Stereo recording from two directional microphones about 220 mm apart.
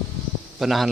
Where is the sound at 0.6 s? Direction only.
Centre (ahead or behind).